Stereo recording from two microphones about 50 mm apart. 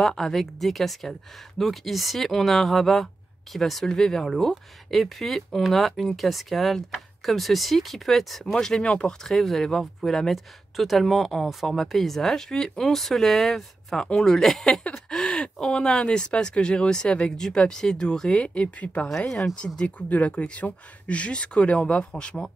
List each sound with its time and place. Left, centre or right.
0.0 s speech: centre
9.3 s speech: centre
14.0 s speech: centre
14.9 s a sound: centre
15.5 s speech: centre
18.3 s speech: left
19.0 s speech: centre
19.8 s speech: left